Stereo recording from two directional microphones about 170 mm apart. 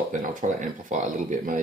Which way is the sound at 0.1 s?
50° right (ahead or behind).